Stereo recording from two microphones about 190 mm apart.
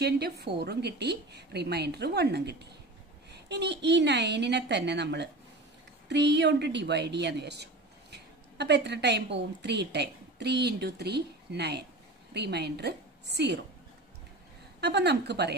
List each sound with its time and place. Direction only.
0.0 s a woman's voice: 60° right (ahead or behind)
14.8 s a woman's voice: 60° right (ahead or behind)